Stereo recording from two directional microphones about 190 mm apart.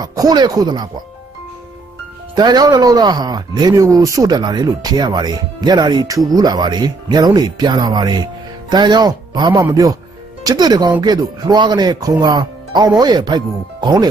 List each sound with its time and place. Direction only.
0.0 s speech: 20° right (ahead or behind)
2.3 s speech: 20° right (ahead or behind)